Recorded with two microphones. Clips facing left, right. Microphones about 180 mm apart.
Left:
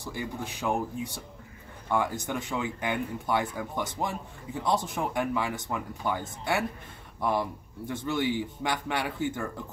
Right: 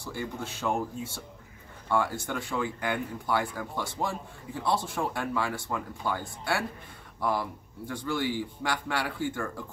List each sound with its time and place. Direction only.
0.0 s speech: 15° left (ahead or behind)